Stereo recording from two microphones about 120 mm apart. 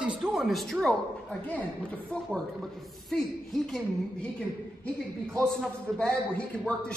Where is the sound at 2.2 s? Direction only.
Centre (ahead or behind).